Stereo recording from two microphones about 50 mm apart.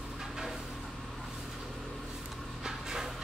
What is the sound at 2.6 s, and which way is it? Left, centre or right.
Dog, centre.